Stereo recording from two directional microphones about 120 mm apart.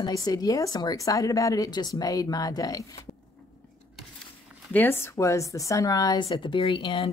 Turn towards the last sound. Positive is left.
turn(degrees=50)  # may be behind; listen again after turning